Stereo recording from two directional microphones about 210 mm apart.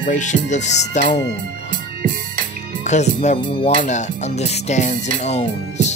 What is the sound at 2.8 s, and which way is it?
Speech, 35° left (ahead or behind).